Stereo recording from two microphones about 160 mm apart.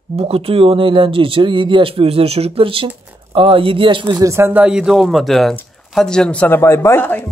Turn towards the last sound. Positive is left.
turn(degrees=10)  # may be behind; listen again after turning